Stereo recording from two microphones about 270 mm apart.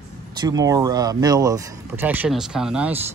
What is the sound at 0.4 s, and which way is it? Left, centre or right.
Speech, centre.